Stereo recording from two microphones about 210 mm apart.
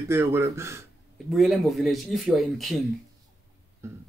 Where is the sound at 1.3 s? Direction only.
Centre (ahead or behind).